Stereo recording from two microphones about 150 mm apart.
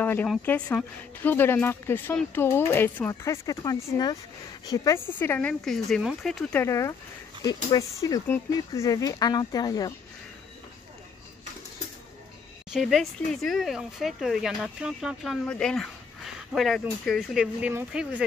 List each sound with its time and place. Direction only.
0.0 s speech: 10° left (ahead or behind)
6.5 s speech: 20° left (ahead or behind)
12.7 s speech: centre (ahead or behind)